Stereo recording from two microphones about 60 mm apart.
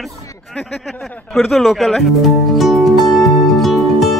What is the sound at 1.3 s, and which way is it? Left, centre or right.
Music, centre.